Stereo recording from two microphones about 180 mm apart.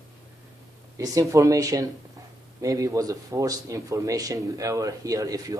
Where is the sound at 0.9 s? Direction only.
20° right (ahead or behind).